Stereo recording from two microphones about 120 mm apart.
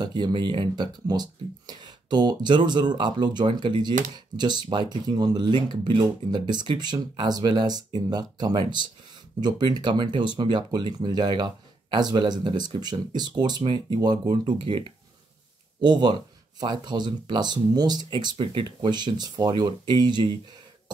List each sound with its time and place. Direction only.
0.0 s speech: 40° right (ahead or behind)